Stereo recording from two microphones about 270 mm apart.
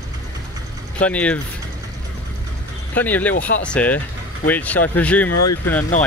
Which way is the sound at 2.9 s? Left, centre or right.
Centre.